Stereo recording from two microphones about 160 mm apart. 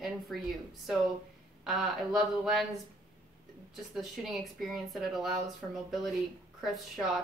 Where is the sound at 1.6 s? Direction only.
Centre (ahead or behind).